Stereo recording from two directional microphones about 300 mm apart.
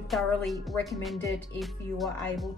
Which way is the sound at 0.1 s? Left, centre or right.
Centre.